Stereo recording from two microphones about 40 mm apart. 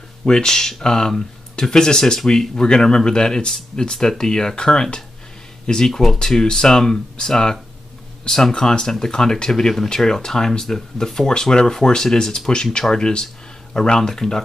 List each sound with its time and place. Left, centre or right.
0.2 s speech: centre